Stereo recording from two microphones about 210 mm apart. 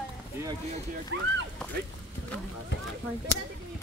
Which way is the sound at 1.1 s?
60° right (ahead or behind).